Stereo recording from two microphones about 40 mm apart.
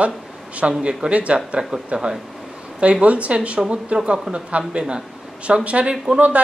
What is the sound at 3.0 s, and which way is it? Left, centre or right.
Speech, right.